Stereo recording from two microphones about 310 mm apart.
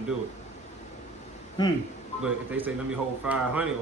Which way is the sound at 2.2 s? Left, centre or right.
Centre.